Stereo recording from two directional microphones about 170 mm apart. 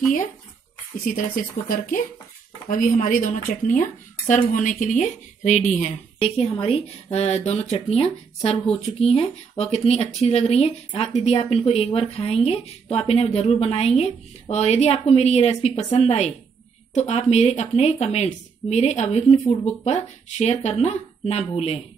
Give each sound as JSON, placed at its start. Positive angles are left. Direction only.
{"t": 1.0, "sound": "speech", "side_deg": 55}